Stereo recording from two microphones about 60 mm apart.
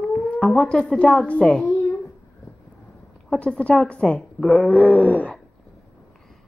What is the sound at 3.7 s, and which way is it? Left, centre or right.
A woman's voice, centre.